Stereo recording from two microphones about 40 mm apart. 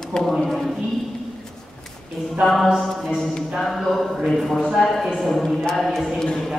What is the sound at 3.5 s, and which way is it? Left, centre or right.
A man's voice, centre.